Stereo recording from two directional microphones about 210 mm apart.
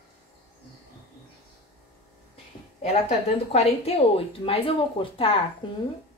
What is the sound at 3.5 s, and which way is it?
Speech, 30° left (ahead or behind).